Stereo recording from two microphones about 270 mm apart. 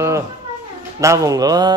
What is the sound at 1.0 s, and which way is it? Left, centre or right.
Speech, centre.